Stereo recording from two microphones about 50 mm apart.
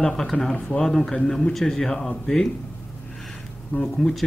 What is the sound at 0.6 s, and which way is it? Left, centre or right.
Speech, left.